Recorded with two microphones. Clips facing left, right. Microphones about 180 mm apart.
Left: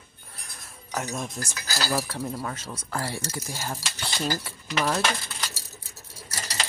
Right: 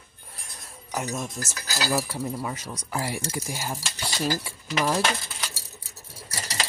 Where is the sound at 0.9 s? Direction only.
5° right (ahead or behind).